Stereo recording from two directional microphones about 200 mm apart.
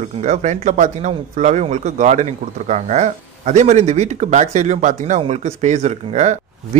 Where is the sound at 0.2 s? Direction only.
35° right (ahead or behind).